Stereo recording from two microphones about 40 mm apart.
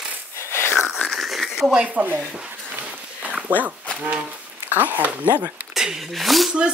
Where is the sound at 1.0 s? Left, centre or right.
Centre.